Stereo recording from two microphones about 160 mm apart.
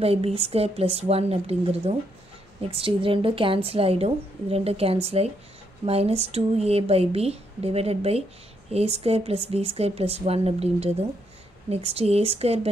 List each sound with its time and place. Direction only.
0.0 s a woman's voice: 40° right (ahead or behind)